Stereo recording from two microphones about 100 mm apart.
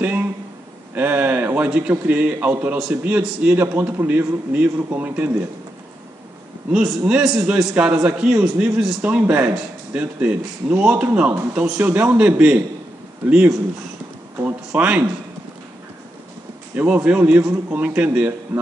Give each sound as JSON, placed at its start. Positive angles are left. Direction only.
{"t": 0.0, "sound": "a sound", "side_deg": -15}
{"t": 0.9, "sound": "a man's voice", "side_deg": -20}
{"t": 6.7, "sound": "a man's voice", "side_deg": -10}
{"t": 9.0, "sound": "a man's voice", "side_deg": -15}
{"t": 14.4, "sound": "a man's voice", "side_deg": -15}
{"t": 16.7, "sound": "a man's voice", "side_deg": -15}